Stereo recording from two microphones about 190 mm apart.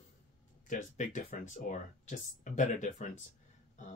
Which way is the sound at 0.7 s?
40° left (ahead or behind).